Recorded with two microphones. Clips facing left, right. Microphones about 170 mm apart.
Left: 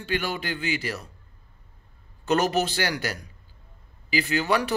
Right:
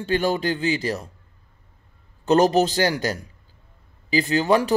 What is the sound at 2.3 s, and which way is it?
Speech, 30° right (ahead or behind).